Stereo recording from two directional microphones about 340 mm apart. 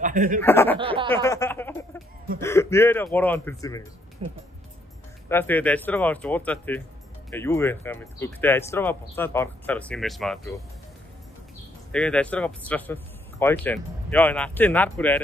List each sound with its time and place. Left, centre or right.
0.0 s speech: right
0.4 s speech: centre
0.7 s a sound: centre
1.1 s music: centre
2.4 s speech: centre
4.2 s a sound: centre
5.3 s speech: centre
11.9 s speech: centre